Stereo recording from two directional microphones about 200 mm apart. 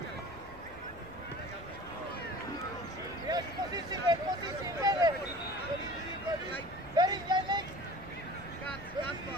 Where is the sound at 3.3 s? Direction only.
20° right (ahead or behind).